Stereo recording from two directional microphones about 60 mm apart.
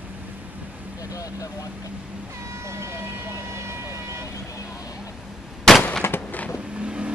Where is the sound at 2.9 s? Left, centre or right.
Right.